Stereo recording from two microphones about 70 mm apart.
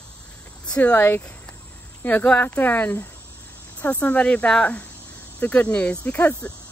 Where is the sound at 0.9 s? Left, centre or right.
Left.